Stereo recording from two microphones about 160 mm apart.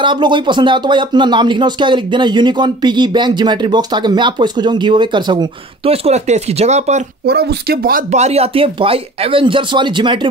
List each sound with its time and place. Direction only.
0.0 s speech: 30° right (ahead or behind)
7.2 s speech: 80° right
8.1 s speech: 40° right (ahead or behind)